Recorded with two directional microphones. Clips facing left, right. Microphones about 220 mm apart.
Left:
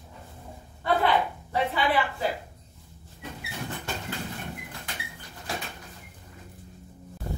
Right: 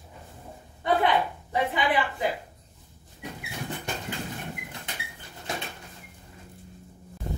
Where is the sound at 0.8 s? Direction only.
20° right (ahead or behind).